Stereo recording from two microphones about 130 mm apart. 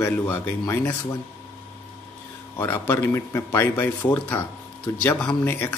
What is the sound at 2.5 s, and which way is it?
Speech, 15° left (ahead or behind).